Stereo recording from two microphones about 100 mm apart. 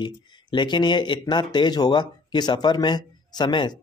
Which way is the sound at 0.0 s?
50° left (ahead or behind).